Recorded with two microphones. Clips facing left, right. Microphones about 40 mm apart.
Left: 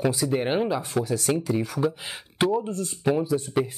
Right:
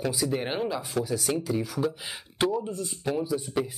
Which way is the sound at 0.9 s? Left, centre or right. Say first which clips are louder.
Left 3 dB; centre.